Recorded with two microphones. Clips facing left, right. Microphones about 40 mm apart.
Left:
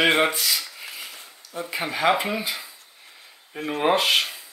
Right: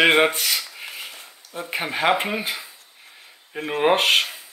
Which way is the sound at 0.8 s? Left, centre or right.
Centre.